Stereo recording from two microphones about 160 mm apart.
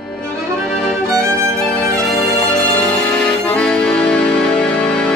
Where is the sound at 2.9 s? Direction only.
5° left (ahead or behind).